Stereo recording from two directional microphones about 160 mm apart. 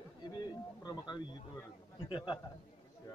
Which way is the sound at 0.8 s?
25° left (ahead or behind).